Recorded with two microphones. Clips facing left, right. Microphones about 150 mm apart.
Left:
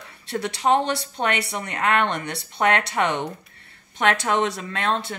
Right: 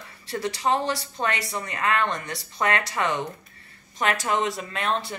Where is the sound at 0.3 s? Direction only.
65° left (ahead or behind).